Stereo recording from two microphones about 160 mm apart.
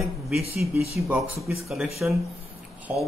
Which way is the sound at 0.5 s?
40° left (ahead or behind).